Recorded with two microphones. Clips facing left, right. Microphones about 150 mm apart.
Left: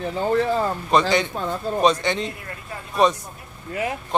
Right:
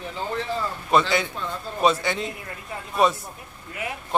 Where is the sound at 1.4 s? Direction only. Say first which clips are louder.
Left 5 dB; 45° left (ahead or behind).